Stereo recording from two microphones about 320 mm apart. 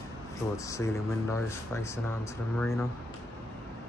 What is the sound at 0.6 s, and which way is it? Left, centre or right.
Speech, centre.